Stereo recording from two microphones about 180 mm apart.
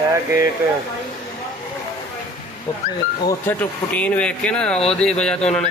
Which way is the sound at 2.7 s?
20° left (ahead or behind).